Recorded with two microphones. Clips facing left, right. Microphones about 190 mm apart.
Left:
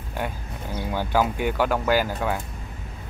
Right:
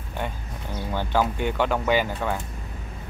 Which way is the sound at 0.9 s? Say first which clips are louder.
Left 1 dB; 10° left (ahead or behind).